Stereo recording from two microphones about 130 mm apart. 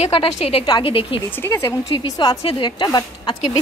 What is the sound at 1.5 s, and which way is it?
A woman's voice, 30° left (ahead or behind).